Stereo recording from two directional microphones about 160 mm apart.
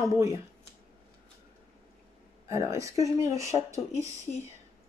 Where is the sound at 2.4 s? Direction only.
20° right (ahead or behind).